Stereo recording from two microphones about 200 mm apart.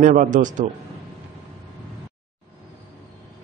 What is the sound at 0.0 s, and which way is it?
Speech, 40° right (ahead or behind).